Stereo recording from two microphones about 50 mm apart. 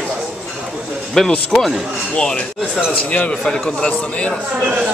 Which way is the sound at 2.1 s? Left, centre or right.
Centre.